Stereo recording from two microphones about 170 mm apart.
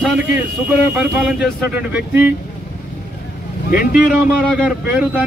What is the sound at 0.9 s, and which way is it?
Speech, 10° right (ahead or behind).